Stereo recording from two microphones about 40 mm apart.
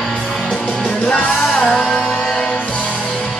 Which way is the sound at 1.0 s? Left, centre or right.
Centre.